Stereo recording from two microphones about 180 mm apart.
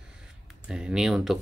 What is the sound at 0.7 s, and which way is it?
Speech, 5° right (ahead or behind).